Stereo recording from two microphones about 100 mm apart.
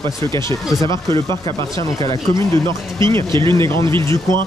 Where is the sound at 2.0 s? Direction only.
40° left (ahead or behind).